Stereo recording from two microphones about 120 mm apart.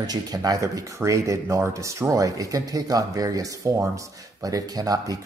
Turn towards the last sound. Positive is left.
turn(degrees=-30)  # may be behind; listen again after turning